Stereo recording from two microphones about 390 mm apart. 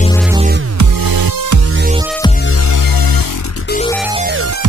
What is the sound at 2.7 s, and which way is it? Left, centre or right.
Music, left.